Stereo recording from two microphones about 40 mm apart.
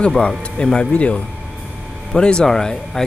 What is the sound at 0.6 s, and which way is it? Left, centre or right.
Music, left.